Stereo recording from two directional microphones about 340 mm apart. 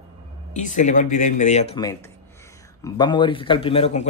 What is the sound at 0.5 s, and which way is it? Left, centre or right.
Speech, left.